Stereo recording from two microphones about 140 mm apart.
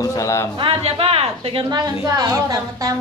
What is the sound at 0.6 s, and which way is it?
A woman's voice, 40° right (ahead or behind).